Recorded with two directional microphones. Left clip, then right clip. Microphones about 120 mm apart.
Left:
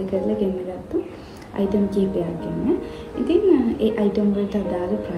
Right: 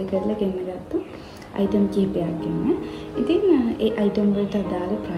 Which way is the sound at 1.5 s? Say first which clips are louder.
Even; 15° right (ahead or behind).